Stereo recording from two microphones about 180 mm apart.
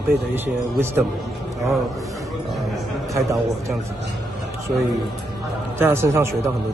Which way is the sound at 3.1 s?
15° right (ahead or behind).